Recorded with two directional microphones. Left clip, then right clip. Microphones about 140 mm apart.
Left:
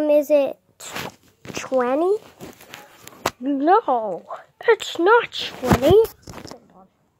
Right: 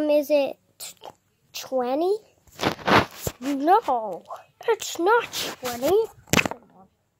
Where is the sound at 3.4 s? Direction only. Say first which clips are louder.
Left 2 dB; 10° left (ahead or behind).